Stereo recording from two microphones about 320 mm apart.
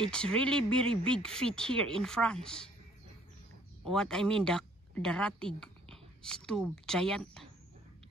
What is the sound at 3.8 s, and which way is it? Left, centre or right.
A woman's voice, centre.